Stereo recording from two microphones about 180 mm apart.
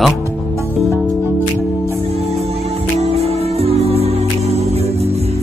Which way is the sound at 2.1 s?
35° right (ahead or behind).